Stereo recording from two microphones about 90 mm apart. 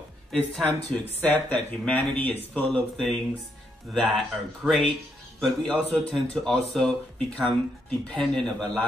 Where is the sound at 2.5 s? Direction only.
5° left (ahead or behind).